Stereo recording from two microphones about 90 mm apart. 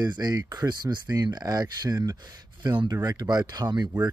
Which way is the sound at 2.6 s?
60° right (ahead or behind).